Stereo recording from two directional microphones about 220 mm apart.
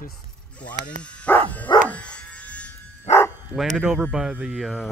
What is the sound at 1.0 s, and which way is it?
Speech, 5° left (ahead or behind).